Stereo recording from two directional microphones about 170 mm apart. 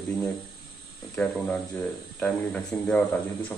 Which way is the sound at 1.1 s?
5° left (ahead or behind).